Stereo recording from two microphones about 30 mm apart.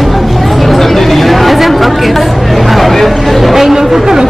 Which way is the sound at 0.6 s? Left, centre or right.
Centre.